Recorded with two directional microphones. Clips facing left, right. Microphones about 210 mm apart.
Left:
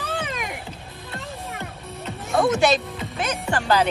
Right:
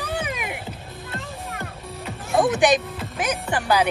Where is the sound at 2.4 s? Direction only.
15° right (ahead or behind).